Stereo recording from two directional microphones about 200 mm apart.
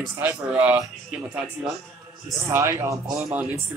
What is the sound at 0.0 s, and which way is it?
Speech, 10° right (ahead or behind).